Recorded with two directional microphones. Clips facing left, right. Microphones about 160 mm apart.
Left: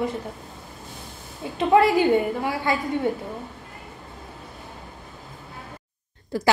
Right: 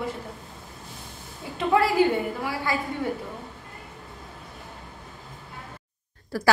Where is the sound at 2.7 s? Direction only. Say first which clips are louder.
Left 3 dB; 20° left (ahead or behind).